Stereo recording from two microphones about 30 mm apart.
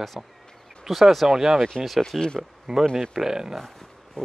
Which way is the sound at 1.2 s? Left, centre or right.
Centre.